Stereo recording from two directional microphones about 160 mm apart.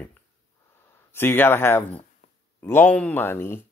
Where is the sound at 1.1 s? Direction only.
15° left (ahead or behind).